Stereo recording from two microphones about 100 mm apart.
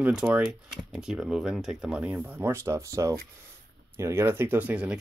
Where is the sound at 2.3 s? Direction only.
25° right (ahead or behind).